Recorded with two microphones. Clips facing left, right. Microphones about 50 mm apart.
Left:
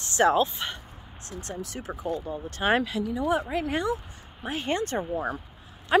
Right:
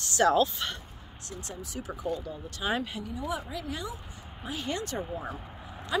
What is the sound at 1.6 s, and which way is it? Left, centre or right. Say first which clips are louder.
Speech: left 3 dB; left.